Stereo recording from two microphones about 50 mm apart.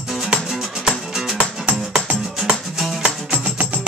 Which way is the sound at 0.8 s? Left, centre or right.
Centre.